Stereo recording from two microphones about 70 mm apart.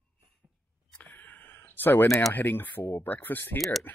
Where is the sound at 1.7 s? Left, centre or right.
Left.